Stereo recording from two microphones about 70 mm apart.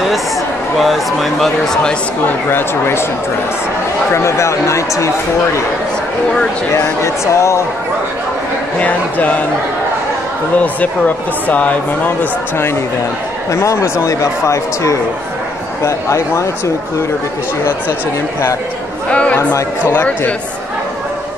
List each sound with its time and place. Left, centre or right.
0.7 s speech: centre
2.2 s speech: left
4.1 s speech: left
6.7 s speech: left
8.7 s speech: left
11.4 s speech: left
13.5 s speech: left
19.0 s speech: centre
19.8 s speech: left